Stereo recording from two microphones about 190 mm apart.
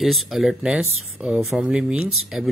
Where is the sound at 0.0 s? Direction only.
Centre (ahead or behind).